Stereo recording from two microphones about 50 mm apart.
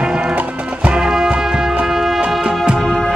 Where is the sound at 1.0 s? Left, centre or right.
Centre.